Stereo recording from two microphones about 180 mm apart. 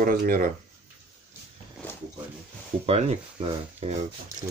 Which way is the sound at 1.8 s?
10° left (ahead or behind).